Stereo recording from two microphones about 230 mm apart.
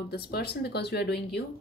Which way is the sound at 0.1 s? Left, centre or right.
Left.